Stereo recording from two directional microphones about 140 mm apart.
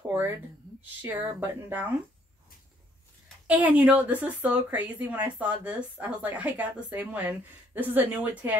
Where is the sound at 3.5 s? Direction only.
10° right (ahead or behind).